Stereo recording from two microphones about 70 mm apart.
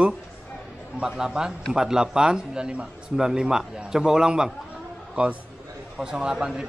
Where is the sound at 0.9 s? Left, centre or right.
Centre.